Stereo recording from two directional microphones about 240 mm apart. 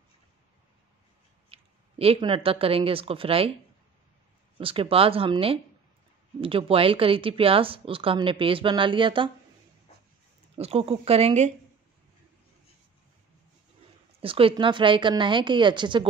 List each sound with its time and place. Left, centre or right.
1.5 s speech: right
4.6 s speech: right
10.6 s speech: right
14.2 s speech: right